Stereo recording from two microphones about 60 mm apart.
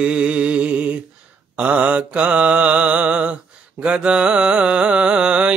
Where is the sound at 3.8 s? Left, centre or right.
Centre.